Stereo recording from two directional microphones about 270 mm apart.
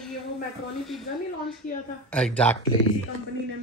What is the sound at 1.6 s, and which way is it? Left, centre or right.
Speech, left.